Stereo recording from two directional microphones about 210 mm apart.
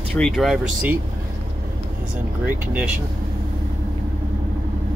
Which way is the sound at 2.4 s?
10° right (ahead or behind).